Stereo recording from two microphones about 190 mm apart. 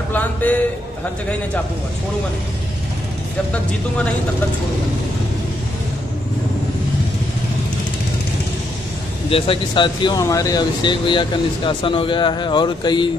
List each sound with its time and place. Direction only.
0.1 s a man's voice: 10° left (ahead or behind)
9.3 s speech: 25° left (ahead or behind)